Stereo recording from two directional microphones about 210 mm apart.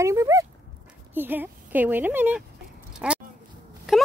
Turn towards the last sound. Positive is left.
turn(degrees=0)  # may be behind; listen again after turning